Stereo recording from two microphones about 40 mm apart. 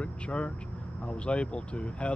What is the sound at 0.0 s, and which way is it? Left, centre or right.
Speech, left.